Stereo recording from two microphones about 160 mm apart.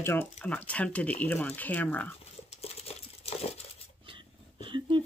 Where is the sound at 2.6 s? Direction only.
40° left (ahead or behind).